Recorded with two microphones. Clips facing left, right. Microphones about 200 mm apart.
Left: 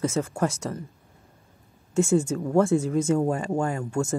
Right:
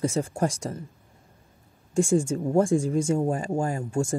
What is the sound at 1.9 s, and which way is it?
Speech, 30° right (ahead or behind).